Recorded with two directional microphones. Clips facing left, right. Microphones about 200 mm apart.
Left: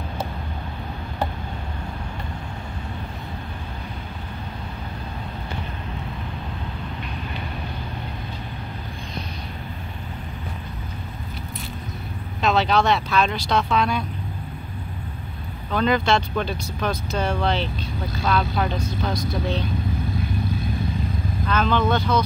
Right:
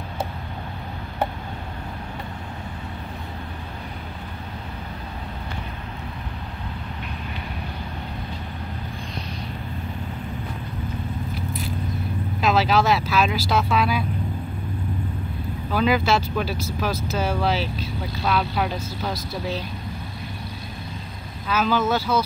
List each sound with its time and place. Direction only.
12.4 s speech: centre (ahead or behind)
15.7 s speech: 5° right (ahead or behind)
21.5 s speech: 5° right (ahead or behind)